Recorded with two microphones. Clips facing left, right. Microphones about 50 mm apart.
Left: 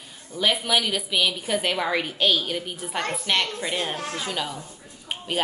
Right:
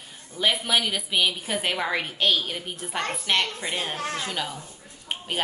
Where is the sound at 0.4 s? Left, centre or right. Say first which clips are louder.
Left 1 dB; centre.